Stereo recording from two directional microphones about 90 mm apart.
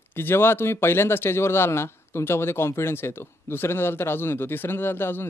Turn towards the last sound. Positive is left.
turn(degrees=25)  # may be behind; listen again after turning